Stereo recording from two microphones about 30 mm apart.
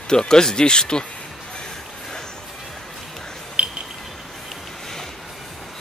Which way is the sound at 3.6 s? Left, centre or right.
Right.